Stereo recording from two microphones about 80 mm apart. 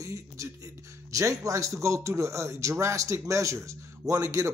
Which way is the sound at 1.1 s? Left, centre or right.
Right.